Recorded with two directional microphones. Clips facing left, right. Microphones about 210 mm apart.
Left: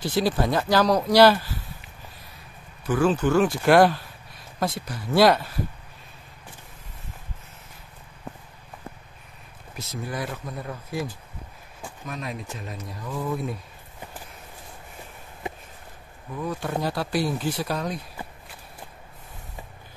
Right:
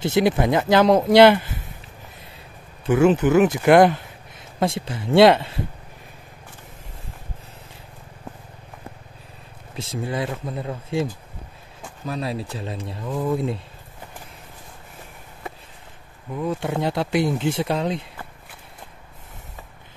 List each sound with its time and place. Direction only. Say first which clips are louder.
0.0 s speech: right 4 dB; 20° right (ahead or behind)
2.8 s speech: right 5 dB; 25° right (ahead or behind)
9.8 s speech: right 5 dB; 25° right (ahead or behind)
12.1 s speech: right 7 dB; 30° right (ahead or behind)
16.4 s speech: right 4 dB; 25° right (ahead or behind)